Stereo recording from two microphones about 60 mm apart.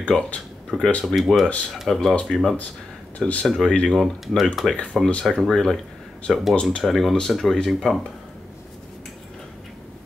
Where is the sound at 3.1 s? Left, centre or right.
Left.